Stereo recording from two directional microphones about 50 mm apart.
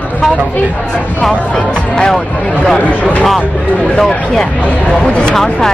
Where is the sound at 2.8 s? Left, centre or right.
Left.